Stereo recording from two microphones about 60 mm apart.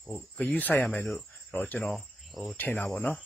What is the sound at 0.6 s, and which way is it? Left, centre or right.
Speech, left.